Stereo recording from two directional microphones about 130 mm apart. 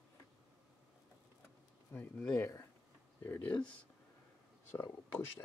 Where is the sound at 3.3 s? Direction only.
10° left (ahead or behind).